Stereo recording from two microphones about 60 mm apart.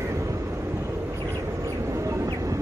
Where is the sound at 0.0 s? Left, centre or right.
Right.